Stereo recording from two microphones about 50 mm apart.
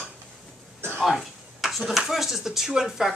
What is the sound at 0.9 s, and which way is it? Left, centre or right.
Speech, centre.